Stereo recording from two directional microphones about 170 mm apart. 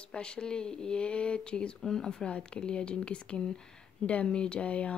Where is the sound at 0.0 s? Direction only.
5° left (ahead or behind).